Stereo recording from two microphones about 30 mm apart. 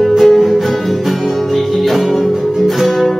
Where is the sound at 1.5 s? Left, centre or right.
Centre.